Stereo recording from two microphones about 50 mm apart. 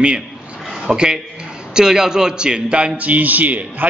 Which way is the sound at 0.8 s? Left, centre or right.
Centre.